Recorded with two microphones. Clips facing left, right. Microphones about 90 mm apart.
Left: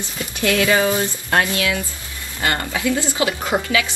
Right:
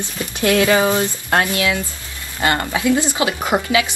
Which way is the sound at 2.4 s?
25° right (ahead or behind).